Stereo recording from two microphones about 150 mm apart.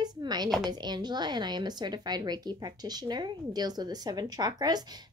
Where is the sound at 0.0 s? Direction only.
25° right (ahead or behind).